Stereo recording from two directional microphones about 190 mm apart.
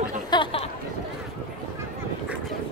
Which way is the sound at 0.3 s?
25° left (ahead or behind).